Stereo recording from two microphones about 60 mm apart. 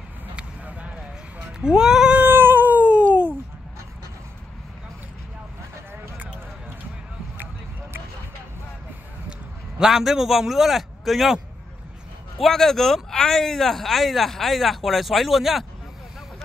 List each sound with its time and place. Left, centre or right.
0.4 s a sound: centre
1.6 s speech: centre
2.2 s cat: right
9.8 s speech: centre
12.4 s speech: centre